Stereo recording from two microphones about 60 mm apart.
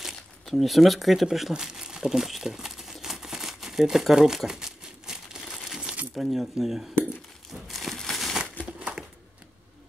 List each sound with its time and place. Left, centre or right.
0.0 s speech: centre
1.5 s crumpling: centre
5.8 s coin: centre
6.1 s speech: centre
7.6 s crumpling: centre